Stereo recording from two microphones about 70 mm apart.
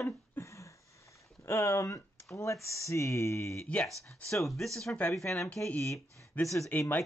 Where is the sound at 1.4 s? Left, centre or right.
Left.